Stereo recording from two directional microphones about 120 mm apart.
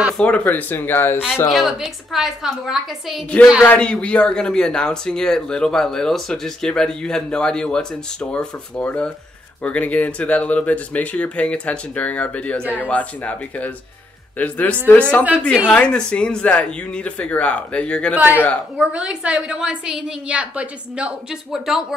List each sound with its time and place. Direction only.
0.2 s speech: 10° left (ahead or behind)
1.5 s a woman's voice: centre (ahead or behind)
3.6 s speech: 10° left (ahead or behind)
18.1 s a woman's voice: 15° right (ahead or behind)